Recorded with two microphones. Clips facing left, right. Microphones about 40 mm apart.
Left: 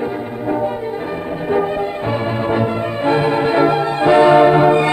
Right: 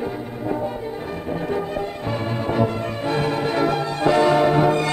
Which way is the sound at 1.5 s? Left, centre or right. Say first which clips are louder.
Left 11 dB; left.